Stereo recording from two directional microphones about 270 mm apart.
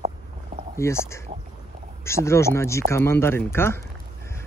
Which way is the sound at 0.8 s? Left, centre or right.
Centre.